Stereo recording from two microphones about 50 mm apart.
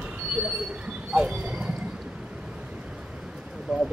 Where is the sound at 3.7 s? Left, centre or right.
Centre.